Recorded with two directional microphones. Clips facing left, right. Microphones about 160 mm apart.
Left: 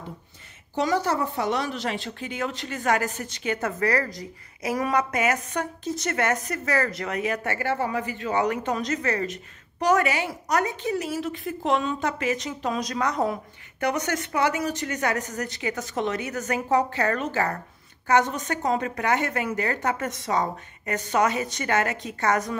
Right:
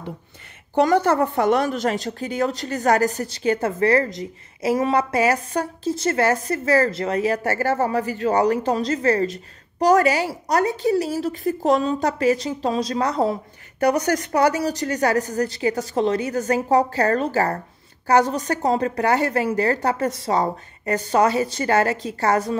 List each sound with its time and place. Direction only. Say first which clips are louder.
0.7 s speech: right 7 dB; 55° right (ahead or behind); by 22.6 s 30° right (ahead or behind)